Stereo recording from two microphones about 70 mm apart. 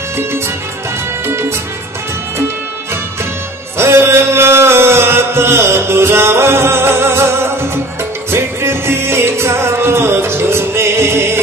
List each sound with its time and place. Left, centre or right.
1.2 s music: right
3.7 s music: right